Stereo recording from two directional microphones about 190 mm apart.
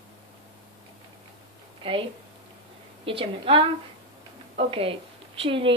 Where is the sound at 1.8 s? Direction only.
25° right (ahead or behind).